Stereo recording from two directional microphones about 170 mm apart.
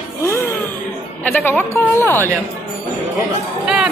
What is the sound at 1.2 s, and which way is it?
Speech, 10° left (ahead or behind).